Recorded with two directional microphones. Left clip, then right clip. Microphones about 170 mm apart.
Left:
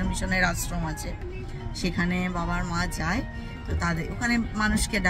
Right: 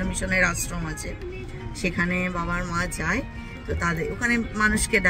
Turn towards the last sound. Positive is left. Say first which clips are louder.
# right 5 dB
turn(degrees=-5)  # may be behind; listen again after turning